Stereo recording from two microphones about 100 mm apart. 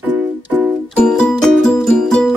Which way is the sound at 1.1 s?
5° left (ahead or behind).